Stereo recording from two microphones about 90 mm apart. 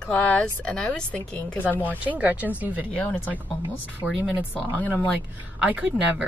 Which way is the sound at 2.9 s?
15° left (ahead or behind).